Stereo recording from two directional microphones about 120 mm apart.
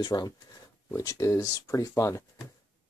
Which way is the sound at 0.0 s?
35° left (ahead or behind).